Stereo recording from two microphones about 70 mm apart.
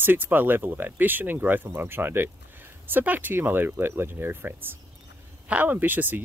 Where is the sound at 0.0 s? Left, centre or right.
Right.